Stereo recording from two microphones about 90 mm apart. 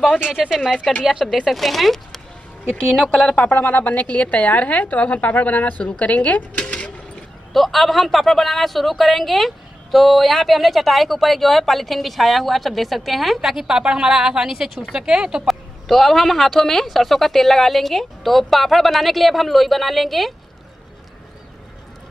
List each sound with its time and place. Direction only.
0.3 s a woman's voice: 5° right (ahead or behind)
3.3 s a woman's voice: 20° left (ahead or behind)
7.5 s speech: centre (ahead or behind)